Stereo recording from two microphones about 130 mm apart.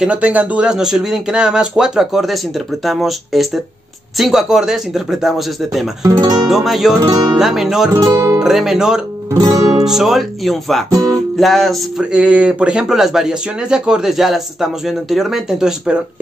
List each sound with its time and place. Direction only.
0.0 s speech: 10° right (ahead or behind)
6.0 s speech: 25° right (ahead or behind)
6.4 s speech: centre (ahead or behind)
7.0 s music: 30° right (ahead or behind)
7.3 s speech: centre (ahead or behind)
9.3 s music: 25° right (ahead or behind)
9.8 s speech: centre (ahead or behind)
10.9 s speech: 25° right (ahead or behind)
11.3 s speech: centre (ahead or behind)